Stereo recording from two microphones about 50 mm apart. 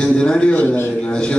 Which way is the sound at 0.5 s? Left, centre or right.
Left.